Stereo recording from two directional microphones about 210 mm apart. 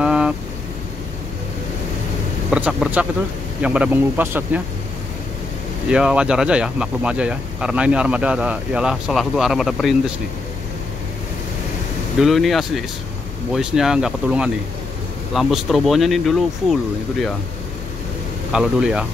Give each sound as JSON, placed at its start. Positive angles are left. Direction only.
{"t": 0.0, "sound": "vehicle", "side_deg": -5}
{"t": 2.5, "sound": "speech", "side_deg": -5}
{"t": 5.9, "sound": "speech", "side_deg": -5}
{"t": 12.2, "sound": "speech", "side_deg": 0}
{"t": 18.5, "sound": "speech", "side_deg": -5}